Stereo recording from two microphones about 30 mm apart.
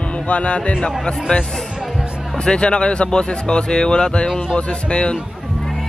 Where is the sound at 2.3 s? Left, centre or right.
Left.